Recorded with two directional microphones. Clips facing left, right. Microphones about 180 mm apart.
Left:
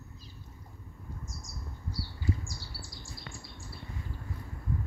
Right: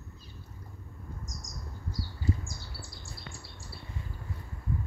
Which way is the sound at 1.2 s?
40° right (ahead or behind).